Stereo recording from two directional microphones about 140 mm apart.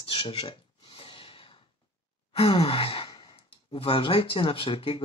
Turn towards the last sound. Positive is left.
turn(degrees=40)  # may be behind; listen again after turning